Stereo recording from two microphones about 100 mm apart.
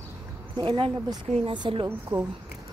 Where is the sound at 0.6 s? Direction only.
55° right (ahead or behind).